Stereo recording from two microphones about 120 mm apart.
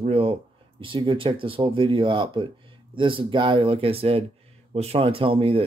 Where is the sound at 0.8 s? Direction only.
45° right (ahead or behind).